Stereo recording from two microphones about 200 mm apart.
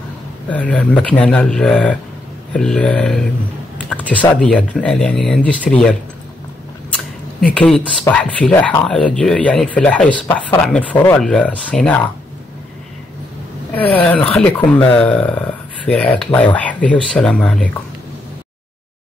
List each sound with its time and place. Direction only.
0.5 s speech: 5° left (ahead or behind)
4.4 s speech: 5° left (ahead or behind)
7.3 s speech: 5° left (ahead or behind)
13.7 s speech: 10° left (ahead or behind)